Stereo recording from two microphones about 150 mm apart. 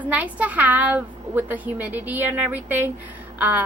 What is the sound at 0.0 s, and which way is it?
A woman's voice, 10° right (ahead or behind).